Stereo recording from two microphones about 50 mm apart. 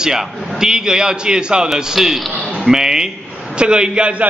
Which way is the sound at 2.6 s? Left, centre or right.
Centre.